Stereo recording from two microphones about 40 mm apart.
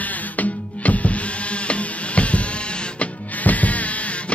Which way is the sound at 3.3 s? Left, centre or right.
Left.